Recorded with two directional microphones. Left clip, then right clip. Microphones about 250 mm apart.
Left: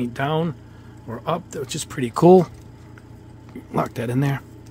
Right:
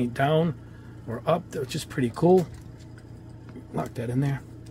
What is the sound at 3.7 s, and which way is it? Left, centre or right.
Speech, left.